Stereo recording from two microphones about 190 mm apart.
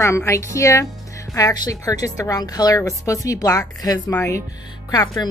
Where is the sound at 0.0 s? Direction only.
15° left (ahead or behind).